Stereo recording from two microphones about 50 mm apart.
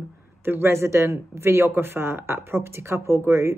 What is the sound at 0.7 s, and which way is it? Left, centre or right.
Speech, right.